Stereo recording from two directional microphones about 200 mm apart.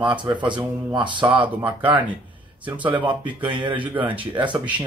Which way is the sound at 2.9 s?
25° right (ahead or behind).